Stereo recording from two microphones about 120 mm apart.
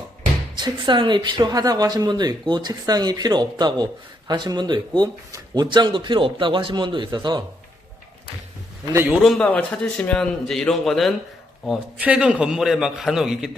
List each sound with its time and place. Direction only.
0.6 s speech: 40° right (ahead or behind)
8.9 s a man's voice: 15° right (ahead or behind)
9.2 s a man's voice: 5° left (ahead or behind)
12.0 s a man's voice: 10° right (ahead or behind)